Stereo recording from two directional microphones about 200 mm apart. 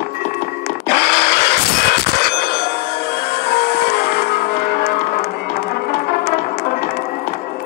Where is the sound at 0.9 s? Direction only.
50° left (ahead or behind).